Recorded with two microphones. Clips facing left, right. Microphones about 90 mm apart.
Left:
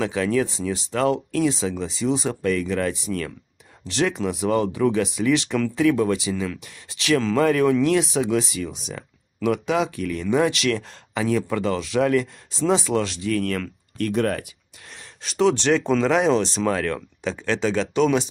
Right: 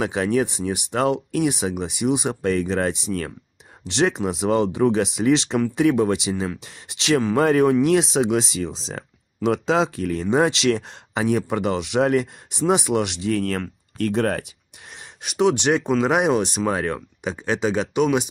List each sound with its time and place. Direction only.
0.0 s speech: 25° right (ahead or behind)
15.0 s speech: 15° right (ahead or behind)